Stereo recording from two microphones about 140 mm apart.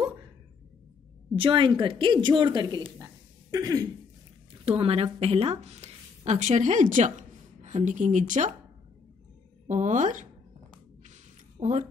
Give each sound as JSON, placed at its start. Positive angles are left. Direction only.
{"t": 1.3, "sound": "a woman's voice", "side_deg": -40}
{"t": 4.6, "sound": "a woman's voice", "side_deg": -45}
{"t": 9.7, "sound": "speech", "side_deg": -60}
{"t": 11.6, "sound": "speech", "side_deg": -50}